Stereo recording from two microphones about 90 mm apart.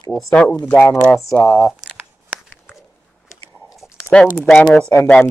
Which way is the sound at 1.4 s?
30° left (ahead or behind).